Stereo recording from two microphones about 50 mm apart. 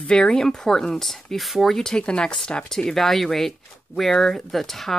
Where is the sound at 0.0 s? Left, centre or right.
Centre.